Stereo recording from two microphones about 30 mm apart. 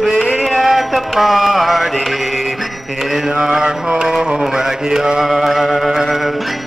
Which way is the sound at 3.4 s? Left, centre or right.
Centre.